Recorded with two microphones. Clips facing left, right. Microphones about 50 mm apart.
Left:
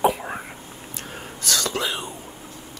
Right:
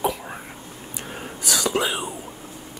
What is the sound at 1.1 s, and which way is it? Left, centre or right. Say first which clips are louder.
Whispering: even; centre.